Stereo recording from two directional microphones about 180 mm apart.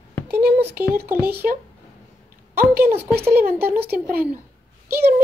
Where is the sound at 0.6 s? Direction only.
10° right (ahead or behind).